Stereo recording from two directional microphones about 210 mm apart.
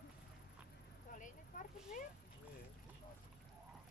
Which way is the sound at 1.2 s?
40° left (ahead or behind).